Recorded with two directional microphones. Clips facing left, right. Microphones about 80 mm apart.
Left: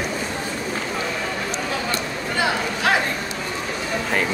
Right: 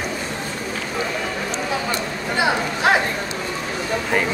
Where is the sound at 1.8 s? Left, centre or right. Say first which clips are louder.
Right 1 dB; centre.